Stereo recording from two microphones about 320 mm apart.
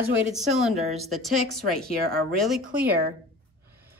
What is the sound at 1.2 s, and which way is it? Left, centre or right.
Speech, centre.